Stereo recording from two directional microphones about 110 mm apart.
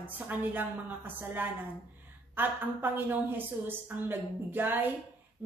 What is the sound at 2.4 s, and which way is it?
A woman's voice, 20° right (ahead or behind).